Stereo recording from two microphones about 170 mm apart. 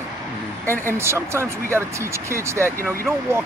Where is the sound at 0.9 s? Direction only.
15° right (ahead or behind).